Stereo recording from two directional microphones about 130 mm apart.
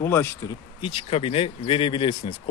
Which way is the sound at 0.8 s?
45° left (ahead or behind).